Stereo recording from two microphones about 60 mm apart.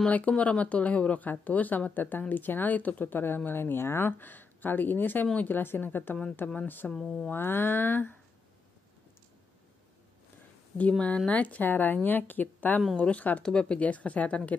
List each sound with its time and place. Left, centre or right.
0.1 s speech: left
6.8 s speech: left
7.2 s speech: left
10.8 s speech: left